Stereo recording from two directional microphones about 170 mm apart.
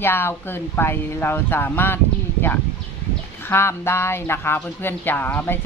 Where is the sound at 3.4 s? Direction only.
15° left (ahead or behind).